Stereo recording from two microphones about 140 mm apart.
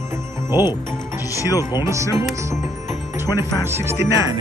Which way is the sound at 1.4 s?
25° left (ahead or behind).